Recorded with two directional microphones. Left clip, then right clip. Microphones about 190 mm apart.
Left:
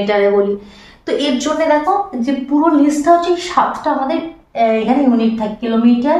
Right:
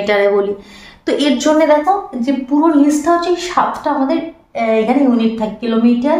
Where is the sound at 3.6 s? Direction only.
25° right (ahead or behind).